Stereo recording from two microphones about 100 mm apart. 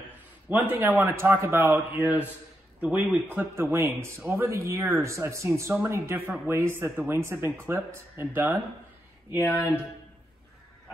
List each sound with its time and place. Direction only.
0.7 s speech: 20° right (ahead or behind)
9.4 s speech: 25° left (ahead or behind)